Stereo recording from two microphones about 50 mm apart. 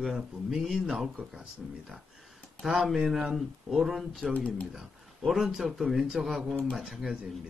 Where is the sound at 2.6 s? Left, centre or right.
Centre.